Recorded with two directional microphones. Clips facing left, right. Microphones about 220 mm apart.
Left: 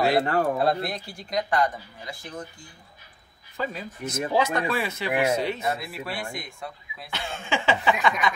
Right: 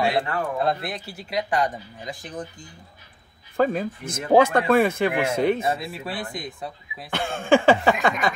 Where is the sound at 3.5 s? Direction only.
50° right (ahead or behind).